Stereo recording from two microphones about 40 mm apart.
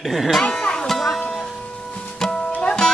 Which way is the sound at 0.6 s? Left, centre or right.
Left.